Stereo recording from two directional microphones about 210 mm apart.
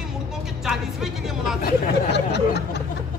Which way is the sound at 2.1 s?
55° left (ahead or behind).